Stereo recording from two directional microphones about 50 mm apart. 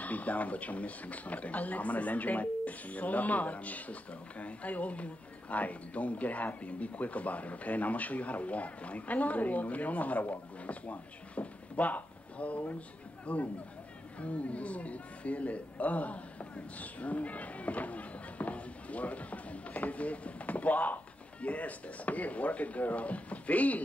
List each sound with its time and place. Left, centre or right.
0.0 s a man's voice: left